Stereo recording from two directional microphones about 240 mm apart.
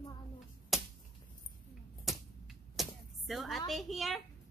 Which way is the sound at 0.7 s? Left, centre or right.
Centre.